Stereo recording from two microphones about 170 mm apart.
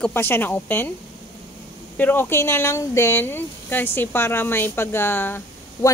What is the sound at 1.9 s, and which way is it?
Speech, 10° left (ahead or behind).